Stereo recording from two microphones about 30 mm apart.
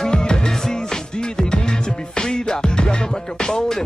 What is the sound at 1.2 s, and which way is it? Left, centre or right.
Music, left.